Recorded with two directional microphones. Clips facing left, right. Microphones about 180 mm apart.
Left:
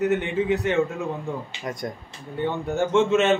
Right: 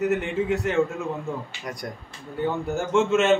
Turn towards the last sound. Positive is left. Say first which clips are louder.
# left 1 dB
turn(degrees=0)  # may be behind; listen again after turning